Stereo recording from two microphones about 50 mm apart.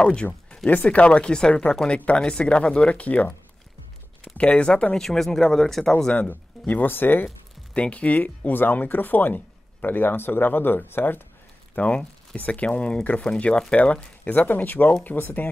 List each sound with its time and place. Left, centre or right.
0.0 s speech: left
4.4 s speech: left
4.9 s speech: centre
6.1 s speech: left
7.7 s speech: left
11.7 s speech: left
14.2 s speech: left